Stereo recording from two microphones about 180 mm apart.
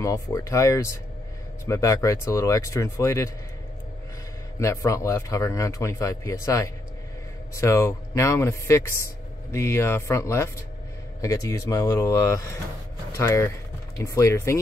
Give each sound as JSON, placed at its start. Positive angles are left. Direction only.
{"t": 0.0, "sound": "speech", "side_deg": 15}
{"t": 4.6, "sound": "speech", "side_deg": 15}